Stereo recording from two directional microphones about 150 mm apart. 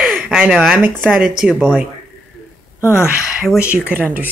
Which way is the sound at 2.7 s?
15° left (ahead or behind).